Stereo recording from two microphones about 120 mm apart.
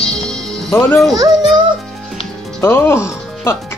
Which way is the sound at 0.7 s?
20° left (ahead or behind).